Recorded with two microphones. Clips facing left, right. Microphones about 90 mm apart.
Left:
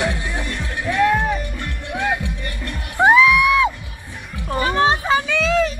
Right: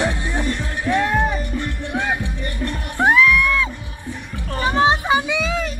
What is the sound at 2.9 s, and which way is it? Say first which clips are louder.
Music: left 3 dB; 5° left (ahead or behind).